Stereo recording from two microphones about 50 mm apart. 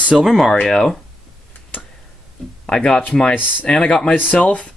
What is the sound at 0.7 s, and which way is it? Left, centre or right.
Speech, centre.